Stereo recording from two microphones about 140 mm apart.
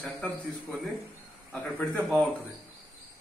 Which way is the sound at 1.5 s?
10° left (ahead or behind).